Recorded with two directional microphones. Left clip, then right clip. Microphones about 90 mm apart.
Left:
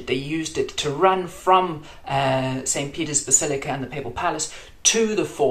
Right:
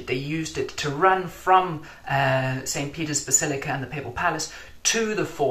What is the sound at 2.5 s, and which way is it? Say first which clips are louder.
Speech: left 3 dB; 25° left (ahead or behind).